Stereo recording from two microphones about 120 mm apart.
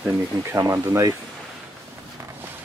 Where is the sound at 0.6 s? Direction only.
25° right (ahead or behind).